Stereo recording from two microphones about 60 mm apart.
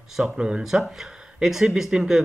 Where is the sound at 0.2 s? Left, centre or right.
Centre.